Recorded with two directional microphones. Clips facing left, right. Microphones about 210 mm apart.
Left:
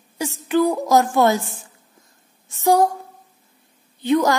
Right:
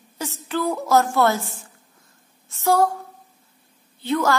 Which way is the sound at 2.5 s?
15° left (ahead or behind).